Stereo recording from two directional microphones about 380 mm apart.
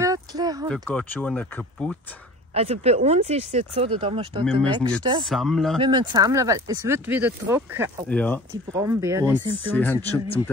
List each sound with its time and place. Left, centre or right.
0.0 s a sound: centre
0.7 s speech: centre
2.5 s speech: centre
5.2 s speech: centre
5.8 s speech: centre
8.7 s speech: centre
9.7 s speech: centre